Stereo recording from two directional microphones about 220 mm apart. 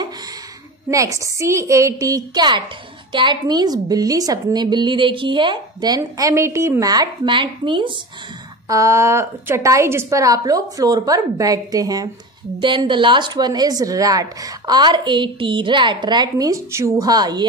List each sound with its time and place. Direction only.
0.8 s a woman's voice: 15° right (ahead or behind)